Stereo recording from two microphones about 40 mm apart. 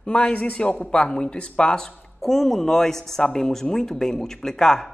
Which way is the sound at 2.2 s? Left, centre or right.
Centre.